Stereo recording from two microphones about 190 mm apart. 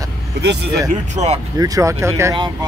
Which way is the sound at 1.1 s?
35° right (ahead or behind).